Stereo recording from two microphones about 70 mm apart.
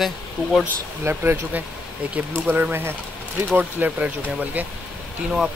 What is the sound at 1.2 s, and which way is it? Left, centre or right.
Speech, right.